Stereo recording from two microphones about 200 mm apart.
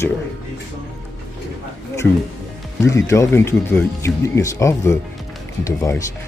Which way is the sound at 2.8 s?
15° left (ahead or behind).